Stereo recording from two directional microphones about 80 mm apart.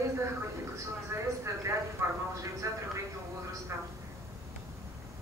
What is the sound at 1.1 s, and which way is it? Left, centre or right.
A man's voice, right.